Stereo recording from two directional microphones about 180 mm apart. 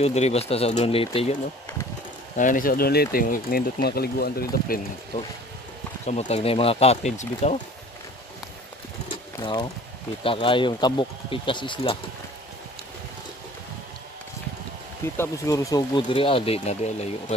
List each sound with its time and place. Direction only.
0.0 s speech: 35° left (ahead or behind)
2.3 s speech: 45° left (ahead or behind)
6.0 s speech: 40° left (ahead or behind)
9.1 s bird: 25° left (ahead or behind)
10.2 s speech: 30° left (ahead or behind)
15.1 s speech: 20° left (ahead or behind); by 17.1 s 35° left (ahead or behind)